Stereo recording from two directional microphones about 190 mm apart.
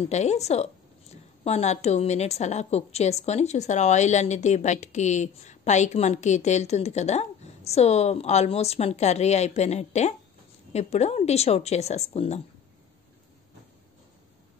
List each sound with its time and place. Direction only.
0.1 s a woman's voice: 35° left (ahead or behind)